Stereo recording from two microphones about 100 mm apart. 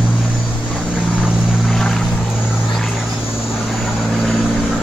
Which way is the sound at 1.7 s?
5° left (ahead or behind).